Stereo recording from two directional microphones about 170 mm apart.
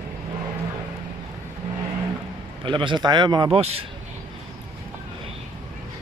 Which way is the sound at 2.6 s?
30° right (ahead or behind).